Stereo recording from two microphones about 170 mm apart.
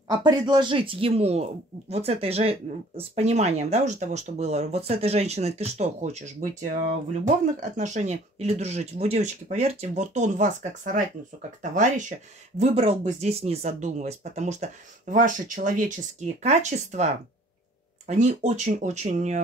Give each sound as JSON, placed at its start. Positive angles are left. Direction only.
{"t": 0.1, "sound": "speech", "side_deg": -25}